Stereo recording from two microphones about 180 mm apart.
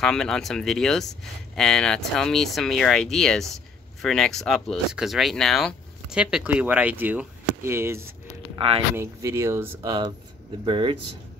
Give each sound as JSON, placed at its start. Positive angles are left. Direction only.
{"t": 0.0, "sound": "speech", "side_deg": 5}
{"t": 8.5, "sound": "speech", "side_deg": -30}
{"t": 8.9, "sound": "speech", "side_deg": -15}
{"t": 10.6, "sound": "speech", "side_deg": -30}